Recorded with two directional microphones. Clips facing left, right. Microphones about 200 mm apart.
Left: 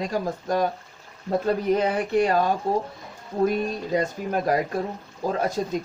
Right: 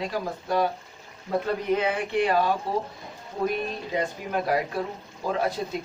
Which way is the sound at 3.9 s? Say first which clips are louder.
Left 3 dB; 40° left (ahead or behind).